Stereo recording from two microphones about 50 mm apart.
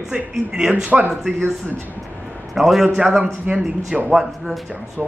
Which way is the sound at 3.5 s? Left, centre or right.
Right.